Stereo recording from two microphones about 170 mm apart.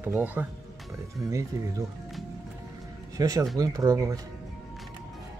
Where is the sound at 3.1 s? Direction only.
20° right (ahead or behind).